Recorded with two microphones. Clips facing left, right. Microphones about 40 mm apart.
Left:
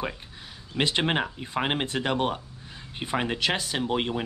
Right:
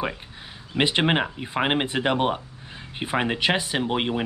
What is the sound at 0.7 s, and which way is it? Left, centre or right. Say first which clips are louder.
Speech: right 4 dB; centre.